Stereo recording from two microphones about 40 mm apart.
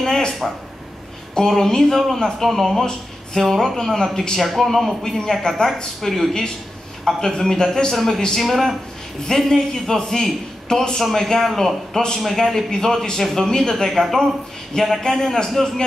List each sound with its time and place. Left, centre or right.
0.0 s a sound: centre
1.5 s speech: centre
2.4 s speech: centre
4.4 s a man's voice: centre